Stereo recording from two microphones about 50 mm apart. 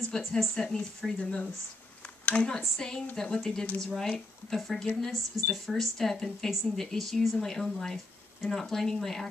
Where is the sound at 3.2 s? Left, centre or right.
Centre.